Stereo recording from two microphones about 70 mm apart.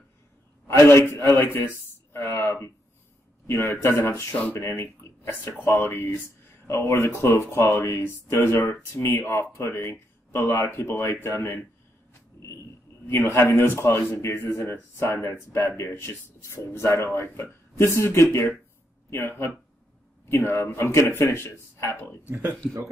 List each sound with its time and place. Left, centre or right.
0.7 s speech: left
11.1 s speech: left
12.1 s a sound: left
13.0 s speech: left
22.3 s speech: right